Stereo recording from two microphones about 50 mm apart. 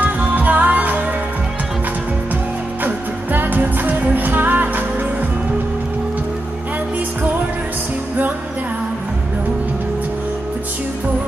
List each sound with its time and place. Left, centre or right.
0.0 s music: right
2.8 s music: right